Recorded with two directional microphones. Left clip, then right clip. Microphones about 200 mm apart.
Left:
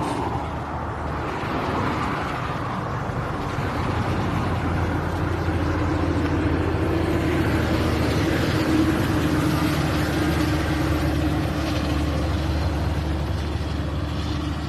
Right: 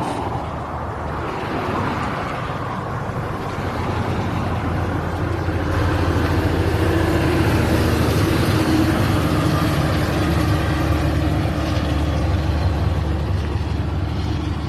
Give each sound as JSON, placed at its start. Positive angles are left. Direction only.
{"t": 6.4, "sound": "vehicle", "side_deg": -45}